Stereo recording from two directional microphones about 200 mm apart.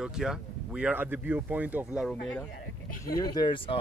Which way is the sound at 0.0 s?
5° right (ahead or behind).